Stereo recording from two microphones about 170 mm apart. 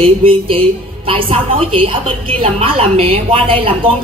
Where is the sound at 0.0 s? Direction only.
35° right (ahead or behind).